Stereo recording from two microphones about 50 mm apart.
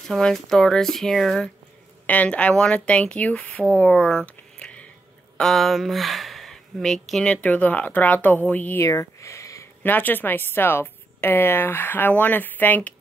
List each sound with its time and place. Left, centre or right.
0.1 s speech: centre
2.0 s speech: left
4.3 s a sound: left
5.4 s speech: centre
7.2 s speech: left
8.7 s a sound: left
9.8 s speech: left